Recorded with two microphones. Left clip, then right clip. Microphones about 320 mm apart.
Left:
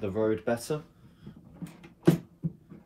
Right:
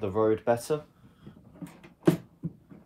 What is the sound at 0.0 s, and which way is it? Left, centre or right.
Speech, centre.